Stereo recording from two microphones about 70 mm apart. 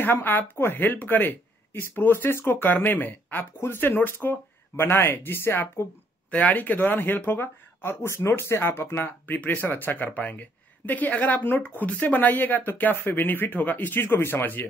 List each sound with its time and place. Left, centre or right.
0.0 s speech: left
6.3 s speech: left